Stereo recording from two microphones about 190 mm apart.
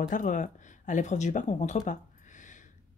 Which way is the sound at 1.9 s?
40° left (ahead or behind).